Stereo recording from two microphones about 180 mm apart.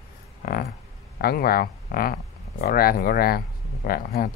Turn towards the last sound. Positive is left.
turn(degrees=55)  # may be behind; listen again after turning